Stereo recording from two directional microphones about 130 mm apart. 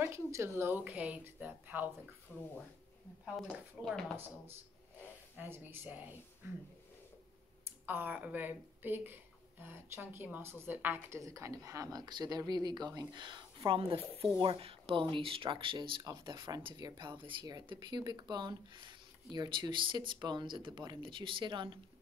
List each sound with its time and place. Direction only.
0.0 s a woman's voice: 20° right (ahead or behind)
2.3 s speech: 10° left (ahead or behind)
3.8 s speech: 5° left (ahead or behind)
5.3 s a woman's voice: 15° right (ahead or behind)
7.8 s a woman's voice: 15° right (ahead or behind); by 21.7 s 40° right (ahead or behind)